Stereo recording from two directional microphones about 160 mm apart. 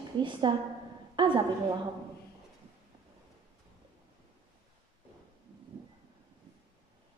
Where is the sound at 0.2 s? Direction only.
30° right (ahead or behind).